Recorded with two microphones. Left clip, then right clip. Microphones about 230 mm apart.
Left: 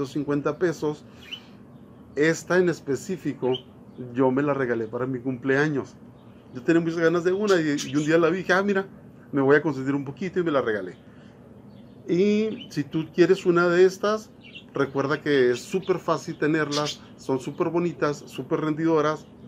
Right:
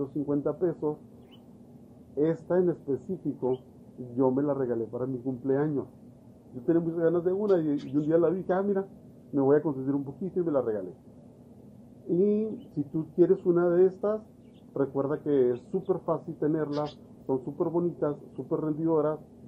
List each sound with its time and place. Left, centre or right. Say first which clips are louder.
0.0 s speech: left 4 dB; left
2.1 s speech: left 5 dB; left
12.1 s speech: left 4 dB; left